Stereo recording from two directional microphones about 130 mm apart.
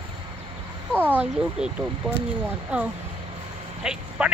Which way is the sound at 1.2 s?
5° right (ahead or behind).